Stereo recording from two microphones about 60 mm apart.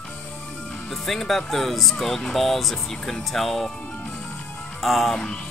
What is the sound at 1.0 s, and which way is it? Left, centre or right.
Speech, centre.